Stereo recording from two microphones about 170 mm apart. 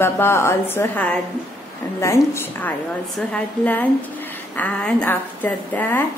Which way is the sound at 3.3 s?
10° left (ahead or behind).